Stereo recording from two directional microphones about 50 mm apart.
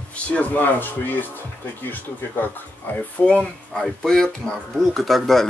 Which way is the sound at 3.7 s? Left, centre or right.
Centre.